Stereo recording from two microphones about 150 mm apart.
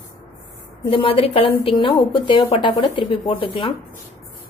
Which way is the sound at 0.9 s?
35° left (ahead or behind).